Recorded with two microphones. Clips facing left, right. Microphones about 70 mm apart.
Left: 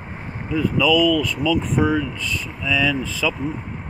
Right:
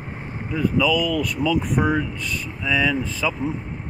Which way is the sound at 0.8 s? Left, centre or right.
Right.